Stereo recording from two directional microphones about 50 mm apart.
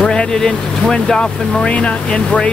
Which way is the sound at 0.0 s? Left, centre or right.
Centre.